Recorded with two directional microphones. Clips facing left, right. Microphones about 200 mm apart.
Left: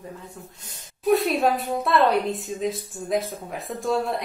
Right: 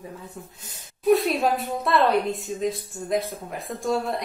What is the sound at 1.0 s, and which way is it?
A woman's voice, centre (ahead or behind).